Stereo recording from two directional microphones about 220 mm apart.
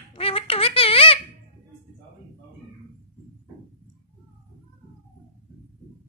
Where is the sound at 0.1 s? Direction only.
25° left (ahead or behind).